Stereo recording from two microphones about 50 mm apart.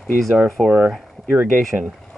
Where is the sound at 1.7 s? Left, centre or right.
Right.